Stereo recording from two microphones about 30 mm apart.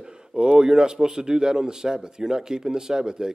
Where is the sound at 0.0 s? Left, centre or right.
Right.